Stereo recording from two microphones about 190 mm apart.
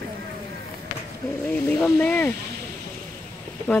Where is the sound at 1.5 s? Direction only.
10° left (ahead or behind).